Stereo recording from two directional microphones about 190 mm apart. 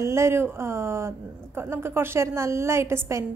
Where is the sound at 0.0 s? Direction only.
15° right (ahead or behind).